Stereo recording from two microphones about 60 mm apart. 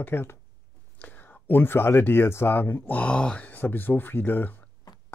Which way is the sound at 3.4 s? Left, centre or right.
Left.